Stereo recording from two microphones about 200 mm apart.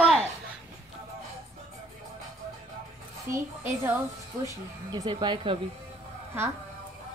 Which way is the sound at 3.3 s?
40° right (ahead or behind).